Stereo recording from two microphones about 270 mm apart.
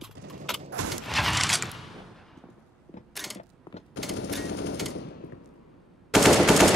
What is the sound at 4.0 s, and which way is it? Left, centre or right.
Machine gun, left.